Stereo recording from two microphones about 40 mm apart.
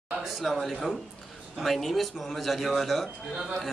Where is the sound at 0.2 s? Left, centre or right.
Centre.